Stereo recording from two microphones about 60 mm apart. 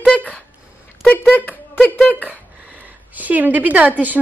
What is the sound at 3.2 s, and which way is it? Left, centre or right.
Speech, right.